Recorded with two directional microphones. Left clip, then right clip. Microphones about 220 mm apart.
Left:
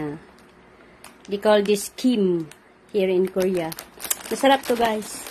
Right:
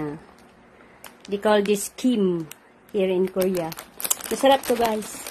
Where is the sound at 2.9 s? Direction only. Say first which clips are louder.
Left 2 dB; 15° left (ahead or behind).